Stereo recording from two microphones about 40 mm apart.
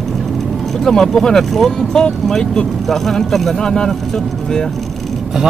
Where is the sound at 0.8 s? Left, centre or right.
Centre.